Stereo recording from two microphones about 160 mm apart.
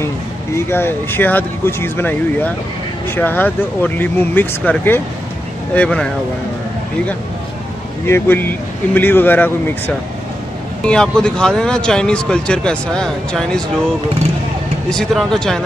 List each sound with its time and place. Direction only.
0.7 s speech: 15° left (ahead or behind)
8.1 s speech: 10° left (ahead or behind)
14.9 s speech: 5° left (ahead or behind)